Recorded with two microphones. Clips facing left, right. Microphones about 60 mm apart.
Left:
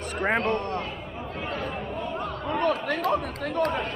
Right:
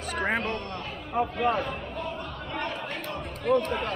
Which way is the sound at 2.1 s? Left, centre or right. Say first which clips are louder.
Left 6 dB; left.